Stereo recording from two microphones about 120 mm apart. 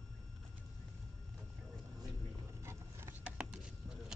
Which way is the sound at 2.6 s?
20° right (ahead or behind).